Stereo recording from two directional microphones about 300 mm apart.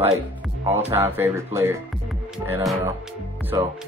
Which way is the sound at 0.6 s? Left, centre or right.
Centre.